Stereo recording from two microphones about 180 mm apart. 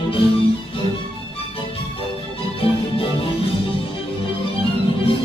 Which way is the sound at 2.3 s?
30° left (ahead or behind).